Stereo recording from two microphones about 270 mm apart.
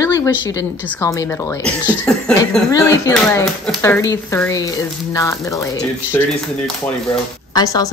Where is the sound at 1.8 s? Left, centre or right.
Centre.